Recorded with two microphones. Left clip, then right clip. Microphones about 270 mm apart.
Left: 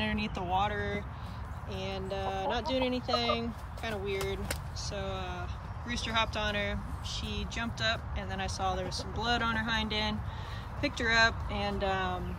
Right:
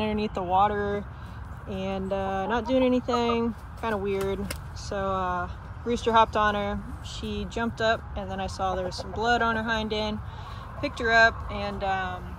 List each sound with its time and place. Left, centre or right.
0.0 s speech: centre
2.5 s speech: centre